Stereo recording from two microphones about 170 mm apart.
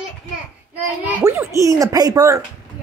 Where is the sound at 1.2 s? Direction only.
15° right (ahead or behind).